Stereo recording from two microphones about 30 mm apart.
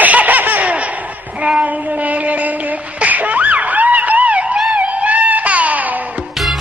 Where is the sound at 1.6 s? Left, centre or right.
Right.